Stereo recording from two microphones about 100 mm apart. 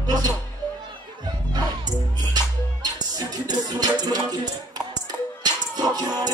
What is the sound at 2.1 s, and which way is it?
Music, 40° right (ahead or behind).